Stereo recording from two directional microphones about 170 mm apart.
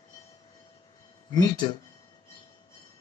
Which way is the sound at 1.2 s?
25° left (ahead or behind).